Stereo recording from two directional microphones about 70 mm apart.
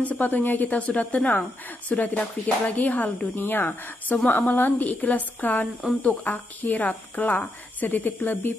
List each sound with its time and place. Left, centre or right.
0.0 s a woman's voice: left